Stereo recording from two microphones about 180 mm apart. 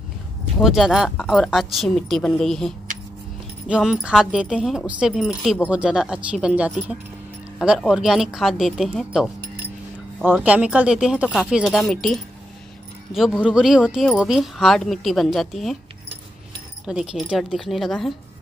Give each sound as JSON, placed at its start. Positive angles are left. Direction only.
{"t": 0.6, "sound": "speech", "side_deg": 0}
{"t": 10.4, "sound": "a woman's voice", "side_deg": -5}
{"t": 16.8, "sound": "speech", "side_deg": -5}